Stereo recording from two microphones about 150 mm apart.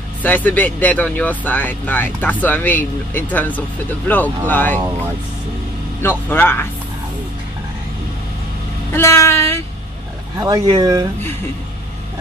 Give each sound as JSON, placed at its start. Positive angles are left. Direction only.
{"t": 0.2, "sound": "speech", "side_deg": 10}
{"t": 6.0, "sound": "speech", "side_deg": 15}
{"t": 8.9, "sound": "speech", "side_deg": 20}
{"t": 10.4, "sound": "speech", "side_deg": -25}